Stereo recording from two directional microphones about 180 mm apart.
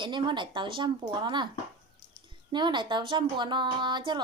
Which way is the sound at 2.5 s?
25° right (ahead or behind).